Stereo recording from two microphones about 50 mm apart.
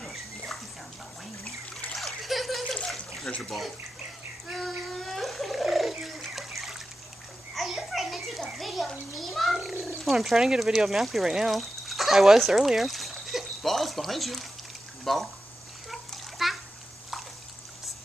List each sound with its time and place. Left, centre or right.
0.0 s dog: centre
2.0 s splash: centre
2.7 s water: centre
3.3 s speech: centre
4.6 s cat: centre
6.2 s trickle: centre
7.5 s children playing: centre
8.5 s a child's voice: centre
15.9 s water: centre